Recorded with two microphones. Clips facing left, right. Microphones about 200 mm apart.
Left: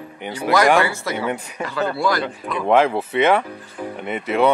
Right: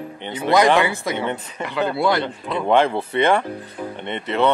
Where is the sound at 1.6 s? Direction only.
20° right (ahead or behind).